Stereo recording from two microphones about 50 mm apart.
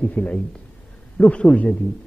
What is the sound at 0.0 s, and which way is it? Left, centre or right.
A man's voice, left.